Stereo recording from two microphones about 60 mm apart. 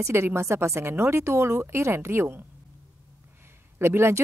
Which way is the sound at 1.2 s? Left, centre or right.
Right.